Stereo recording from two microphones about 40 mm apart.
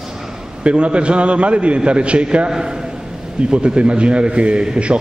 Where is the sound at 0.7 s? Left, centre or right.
Right.